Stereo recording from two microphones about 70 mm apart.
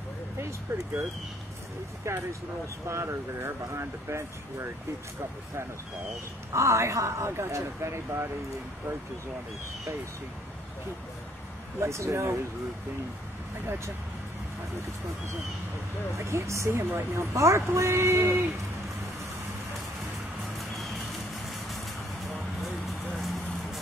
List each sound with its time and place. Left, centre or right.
2.1 s speech: right
6.5 s speech: right
11.8 s speech: right
16.2 s speech: right
20.5 s music: centre
23.1 s a sound: centre